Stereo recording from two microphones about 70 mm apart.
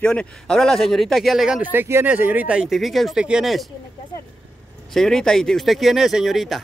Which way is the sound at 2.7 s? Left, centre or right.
Centre.